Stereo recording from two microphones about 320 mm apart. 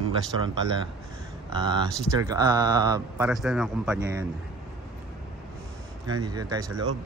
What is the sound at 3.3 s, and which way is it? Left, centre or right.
Speech, centre.